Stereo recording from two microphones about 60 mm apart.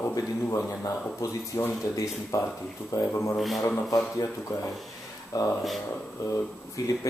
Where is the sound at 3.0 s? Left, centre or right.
Left.